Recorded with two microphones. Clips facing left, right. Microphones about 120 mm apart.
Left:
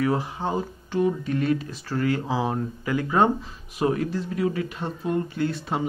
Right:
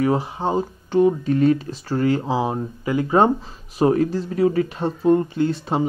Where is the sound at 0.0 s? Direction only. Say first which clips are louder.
Right 4 dB; 25° right (ahead or behind).